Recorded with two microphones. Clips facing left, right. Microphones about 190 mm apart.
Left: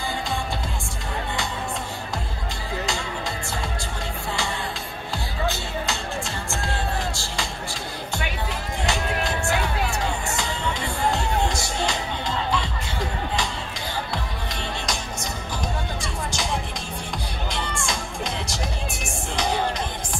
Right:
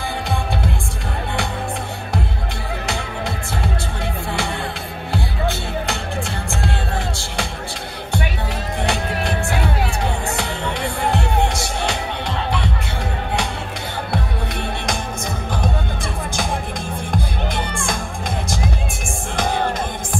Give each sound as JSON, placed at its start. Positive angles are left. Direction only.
{"t": 5.1, "sound": "music", "side_deg": -60}
{"t": 8.8, "sound": "music", "side_deg": -60}
{"t": 10.3, "sound": "music", "side_deg": -60}
{"t": 17.1, "sound": "music", "side_deg": -55}